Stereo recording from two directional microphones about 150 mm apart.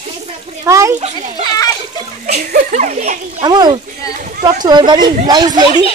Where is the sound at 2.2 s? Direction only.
55° right (ahead or behind).